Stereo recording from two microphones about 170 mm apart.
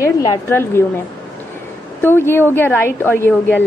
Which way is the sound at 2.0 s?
15° left (ahead or behind).